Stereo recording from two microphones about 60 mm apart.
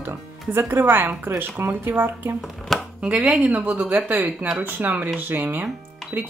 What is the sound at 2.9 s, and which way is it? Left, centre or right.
Speech, right.